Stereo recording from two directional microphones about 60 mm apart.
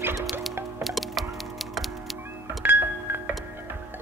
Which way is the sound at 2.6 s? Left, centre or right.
Right.